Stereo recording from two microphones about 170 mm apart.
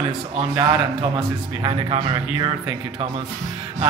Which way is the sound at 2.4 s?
25° right (ahead or behind).